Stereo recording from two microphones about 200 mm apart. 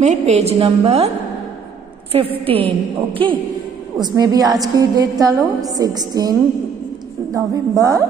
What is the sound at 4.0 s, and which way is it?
A woman's voice, 20° right (ahead or behind).